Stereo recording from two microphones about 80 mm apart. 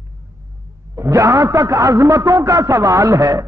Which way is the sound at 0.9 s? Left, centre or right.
Right.